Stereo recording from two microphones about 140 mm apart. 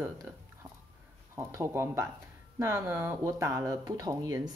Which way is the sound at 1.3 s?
20° right (ahead or behind).